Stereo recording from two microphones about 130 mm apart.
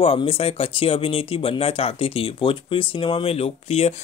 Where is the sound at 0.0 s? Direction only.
45° left (ahead or behind).